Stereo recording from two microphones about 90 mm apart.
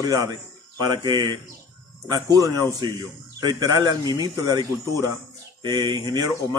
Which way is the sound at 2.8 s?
55° right (ahead or behind).